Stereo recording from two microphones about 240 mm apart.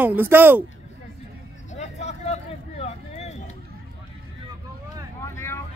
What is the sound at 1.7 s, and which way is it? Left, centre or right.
Vehicle, left.